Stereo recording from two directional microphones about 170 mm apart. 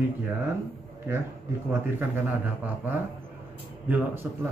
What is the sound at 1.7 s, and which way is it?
Speech, 10° right (ahead or behind).